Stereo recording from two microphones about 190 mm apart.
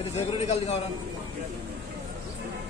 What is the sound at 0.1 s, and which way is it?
Speech, 35° left (ahead or behind).